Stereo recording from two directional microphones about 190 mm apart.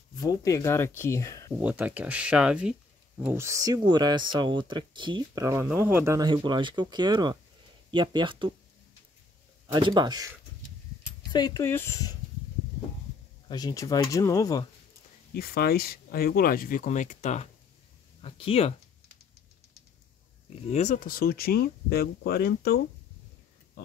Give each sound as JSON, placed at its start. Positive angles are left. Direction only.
{"t": 0.2, "sound": "speech", "side_deg": 20}
{"t": 1.6, "sound": "speech", "side_deg": -10}
{"t": 9.7, "sound": "speech", "side_deg": -25}
{"t": 11.3, "sound": "speech", "side_deg": 20}
{"t": 13.5, "sound": "speech", "side_deg": 20}
{"t": 15.3, "sound": "speech", "side_deg": 55}
{"t": 20.4, "sound": "speech", "side_deg": 35}